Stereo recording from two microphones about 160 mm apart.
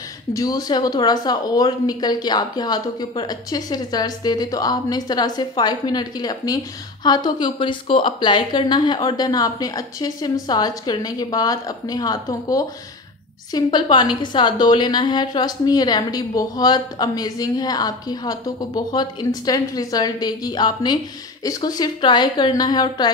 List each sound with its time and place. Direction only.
0.3 s a woman's voice: 20° left (ahead or behind)